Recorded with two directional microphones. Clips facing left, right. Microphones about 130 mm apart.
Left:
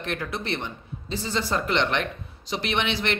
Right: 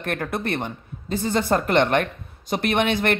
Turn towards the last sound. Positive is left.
turn(degrees=-50)  # may be behind; listen again after turning